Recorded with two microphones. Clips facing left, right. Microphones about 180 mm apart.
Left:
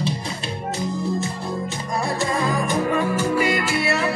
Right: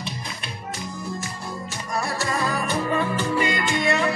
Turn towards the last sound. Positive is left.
turn(degrees=5)  # may be behind; listen again after turning